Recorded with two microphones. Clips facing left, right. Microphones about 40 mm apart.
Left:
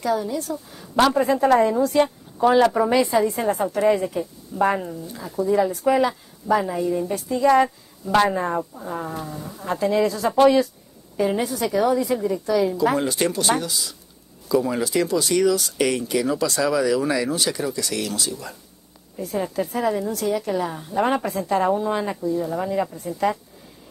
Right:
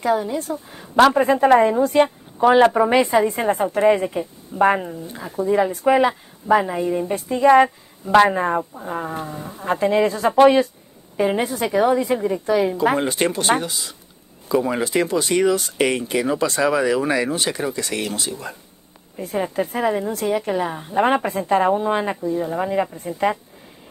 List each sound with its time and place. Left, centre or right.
0.0 s a woman's voice: right